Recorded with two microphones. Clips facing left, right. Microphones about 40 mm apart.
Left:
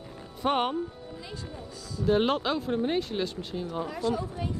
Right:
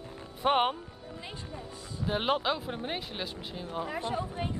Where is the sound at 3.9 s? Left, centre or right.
Right.